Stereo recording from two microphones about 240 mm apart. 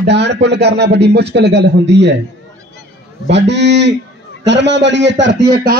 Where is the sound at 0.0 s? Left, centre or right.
Right.